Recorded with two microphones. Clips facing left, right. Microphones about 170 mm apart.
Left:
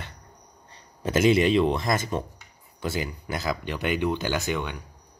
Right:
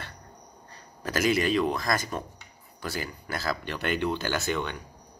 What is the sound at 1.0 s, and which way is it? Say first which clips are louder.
Speech: left 5 dB; 25° left (ahead or behind).